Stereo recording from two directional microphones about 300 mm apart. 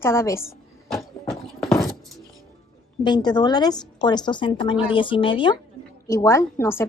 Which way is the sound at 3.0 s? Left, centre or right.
Centre.